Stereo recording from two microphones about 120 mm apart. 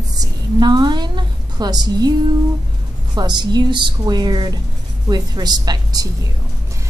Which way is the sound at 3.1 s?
35° right (ahead or behind).